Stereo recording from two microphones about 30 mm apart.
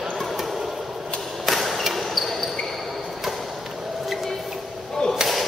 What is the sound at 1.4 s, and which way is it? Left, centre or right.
Basketball bounce, centre.